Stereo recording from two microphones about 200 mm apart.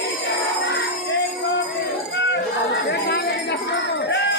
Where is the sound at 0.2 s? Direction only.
60° left (ahead or behind).